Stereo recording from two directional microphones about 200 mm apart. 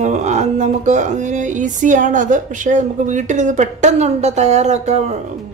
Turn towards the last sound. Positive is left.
turn(degrees=-35)  # may be behind; listen again after turning